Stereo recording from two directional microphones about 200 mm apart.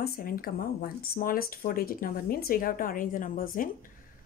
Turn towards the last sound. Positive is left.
turn(degrees=45)  # may be behind; listen again after turning